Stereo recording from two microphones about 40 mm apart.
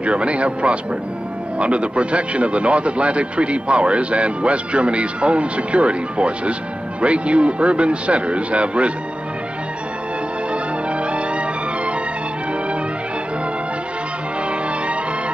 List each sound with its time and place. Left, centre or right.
0.0 s a man's voice: right
10.5 s music: right